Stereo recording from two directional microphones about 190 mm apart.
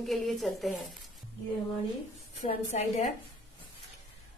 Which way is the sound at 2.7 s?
35° left (ahead or behind).